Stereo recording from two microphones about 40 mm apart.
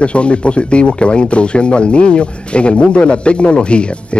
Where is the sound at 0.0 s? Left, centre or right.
Left.